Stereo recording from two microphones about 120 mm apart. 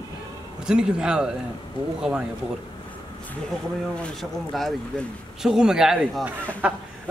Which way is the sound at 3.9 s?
5° left (ahead or behind).